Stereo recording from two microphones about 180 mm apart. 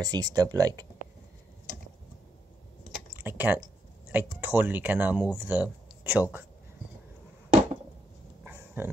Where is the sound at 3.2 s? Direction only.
10° right (ahead or behind).